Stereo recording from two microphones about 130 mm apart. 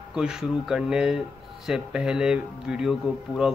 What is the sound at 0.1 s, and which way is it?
Speech, 5° right (ahead or behind).